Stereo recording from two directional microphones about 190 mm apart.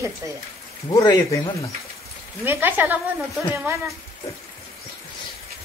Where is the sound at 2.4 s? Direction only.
10° right (ahead or behind).